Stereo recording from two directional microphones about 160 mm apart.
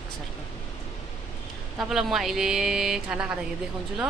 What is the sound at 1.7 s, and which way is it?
Speech, 5° right (ahead or behind).